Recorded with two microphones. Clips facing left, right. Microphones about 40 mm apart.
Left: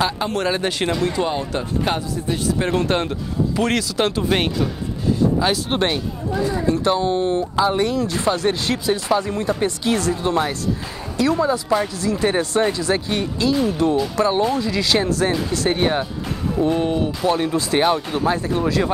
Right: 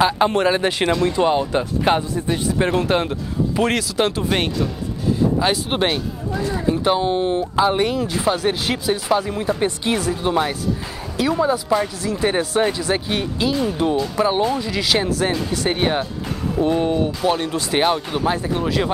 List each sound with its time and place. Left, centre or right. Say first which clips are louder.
0.2 s speech: right 4 dB; centre
5.4 s speech: even; centre
8.0 s speech: even; centre
9.6 s speech: even; right
11.7 s speech: even; centre
17.2 s speech: left 1 dB; centre